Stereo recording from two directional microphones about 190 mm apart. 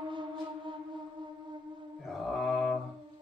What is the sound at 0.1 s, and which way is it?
Music, 25° right (ahead or behind).